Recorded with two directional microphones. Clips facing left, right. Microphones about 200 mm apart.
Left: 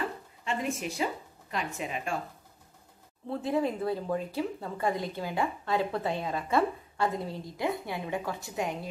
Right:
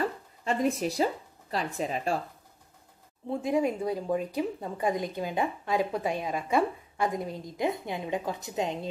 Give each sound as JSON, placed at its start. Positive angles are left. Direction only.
{"t": 0.0, "sound": "speech", "side_deg": -40}
{"t": 3.3, "sound": "speech", "side_deg": -15}